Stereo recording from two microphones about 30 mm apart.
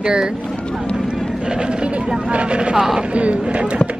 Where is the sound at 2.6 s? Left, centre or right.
Right.